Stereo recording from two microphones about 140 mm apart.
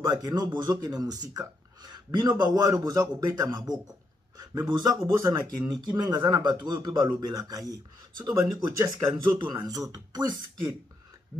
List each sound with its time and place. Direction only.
0.0 s a man's voice: 30° right (ahead or behind)